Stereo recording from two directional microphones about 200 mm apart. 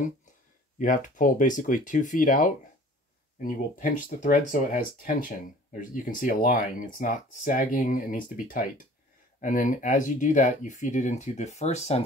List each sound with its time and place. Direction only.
0.7 s speech: 40° left (ahead or behind)